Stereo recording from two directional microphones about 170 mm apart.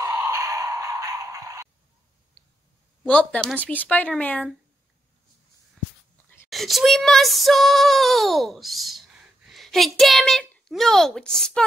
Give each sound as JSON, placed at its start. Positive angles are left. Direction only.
{"t": 0.0, "sound": "music", "side_deg": -15}
{"t": 3.0, "sound": "speech", "side_deg": 5}
{"t": 6.5, "sound": "child singing", "side_deg": 0}
{"t": 9.5, "sound": "a woman's voice", "side_deg": 0}
{"t": 10.7, "sound": "child singing", "side_deg": 0}